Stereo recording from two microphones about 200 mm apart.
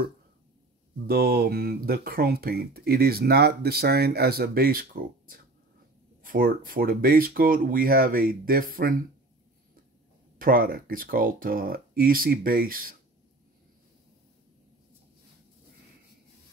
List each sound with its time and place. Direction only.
1.0 s speech: 50° right (ahead or behind)
10.4 s speech: 45° right (ahead or behind)